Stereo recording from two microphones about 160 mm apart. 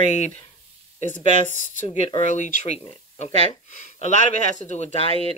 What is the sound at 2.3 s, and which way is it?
Speech, 50° left (ahead or behind).